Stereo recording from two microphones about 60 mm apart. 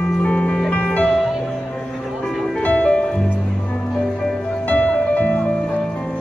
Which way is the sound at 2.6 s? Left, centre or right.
Left.